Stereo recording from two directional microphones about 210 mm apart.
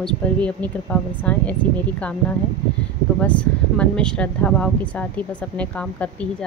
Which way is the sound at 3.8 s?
5° left (ahead or behind).